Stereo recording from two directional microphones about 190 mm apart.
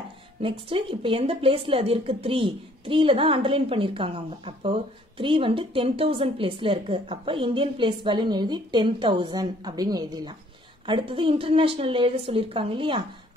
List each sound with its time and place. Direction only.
0.4 s a woman's voice: 30° right (ahead or behind)